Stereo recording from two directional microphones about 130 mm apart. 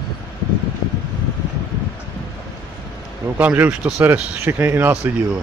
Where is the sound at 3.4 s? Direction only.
10° right (ahead or behind).